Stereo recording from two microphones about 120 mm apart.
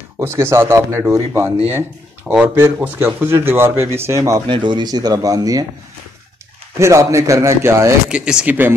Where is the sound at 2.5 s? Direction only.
15° right (ahead or behind).